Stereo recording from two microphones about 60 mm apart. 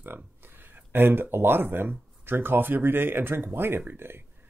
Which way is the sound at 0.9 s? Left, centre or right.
Right.